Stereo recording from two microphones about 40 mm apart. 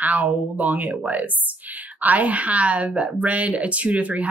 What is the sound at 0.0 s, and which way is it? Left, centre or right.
Speech, right.